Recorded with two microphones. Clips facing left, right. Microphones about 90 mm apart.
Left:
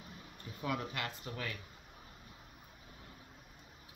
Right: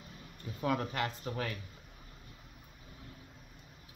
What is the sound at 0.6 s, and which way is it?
Speech, 30° right (ahead or behind).